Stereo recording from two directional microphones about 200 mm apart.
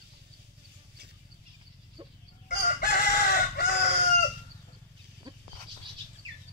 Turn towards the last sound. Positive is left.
turn(degrees=-20)  # may be behind; listen again after turning